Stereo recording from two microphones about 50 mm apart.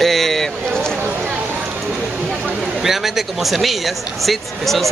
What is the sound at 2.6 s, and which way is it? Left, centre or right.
A man's voice, centre.